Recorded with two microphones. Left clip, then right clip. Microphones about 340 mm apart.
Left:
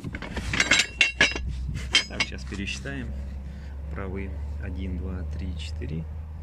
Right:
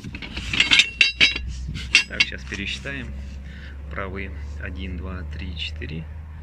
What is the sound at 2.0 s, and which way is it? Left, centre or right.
Cutlery, centre.